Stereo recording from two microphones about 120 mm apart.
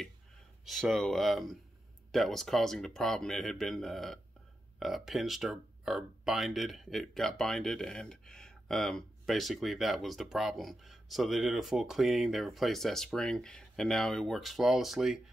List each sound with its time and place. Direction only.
0.7 s speech: centre (ahead or behind)